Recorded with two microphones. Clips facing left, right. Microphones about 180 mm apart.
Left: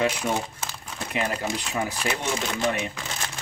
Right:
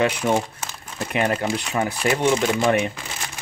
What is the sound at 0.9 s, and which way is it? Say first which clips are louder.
Speech: right 6 dB; 60° right (ahead or behind).